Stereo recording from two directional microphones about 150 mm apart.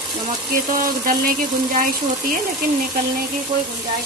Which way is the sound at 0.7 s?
70° right (ahead or behind).